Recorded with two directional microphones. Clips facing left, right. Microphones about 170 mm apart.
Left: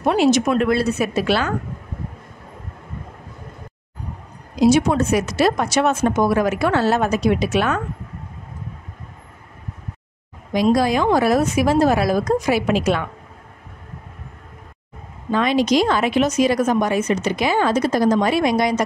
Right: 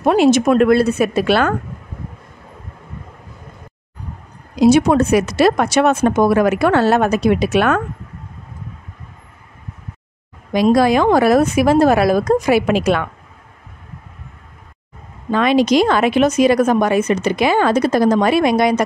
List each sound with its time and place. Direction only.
0.0 s speech: 50° right (ahead or behind)
4.6 s speech: 60° right (ahead or behind)
10.5 s speech: 65° right (ahead or behind)
15.3 s speech: 65° right (ahead or behind)